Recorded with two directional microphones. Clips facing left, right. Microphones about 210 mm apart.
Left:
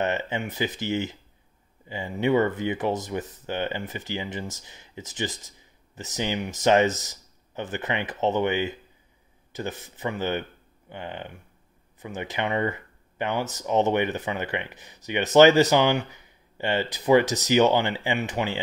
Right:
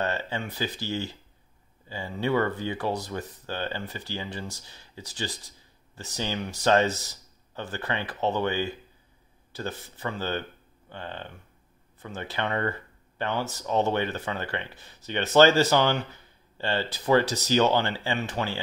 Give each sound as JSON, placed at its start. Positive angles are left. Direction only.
{"t": 0.0, "sound": "speech", "side_deg": 20}